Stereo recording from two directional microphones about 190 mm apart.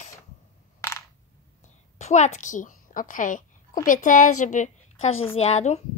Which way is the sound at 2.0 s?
40° left (ahead or behind).